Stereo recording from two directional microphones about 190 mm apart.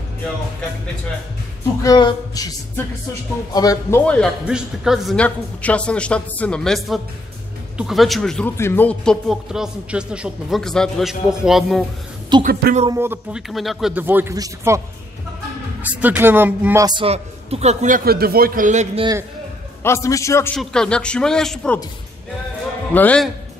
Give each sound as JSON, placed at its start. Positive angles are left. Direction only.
{"t": 1.8, "sound": "speech", "side_deg": 20}
{"t": 4.0, "sound": "a man's voice", "side_deg": 5}
{"t": 12.3, "sound": "speech", "side_deg": -20}
{"t": 12.9, "sound": "a man's voice", "side_deg": -10}
{"t": 13.5, "sound": "a man's voice", "side_deg": 0}
{"t": 15.8, "sound": "a man's voice", "side_deg": -10}
{"t": 16.8, "sound": "a man's voice", "side_deg": -25}
{"t": 19.8, "sound": "a man's voice", "side_deg": 15}
{"t": 20.5, "sound": "speech", "side_deg": 5}
{"t": 22.9, "sound": "a man's voice", "side_deg": 5}